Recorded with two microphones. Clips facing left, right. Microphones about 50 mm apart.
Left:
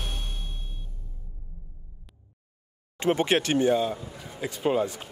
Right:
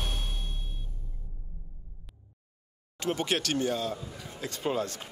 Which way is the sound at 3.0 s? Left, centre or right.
Left.